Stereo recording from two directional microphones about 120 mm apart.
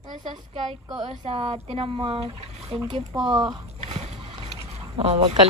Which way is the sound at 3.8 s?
55° right (ahead or behind).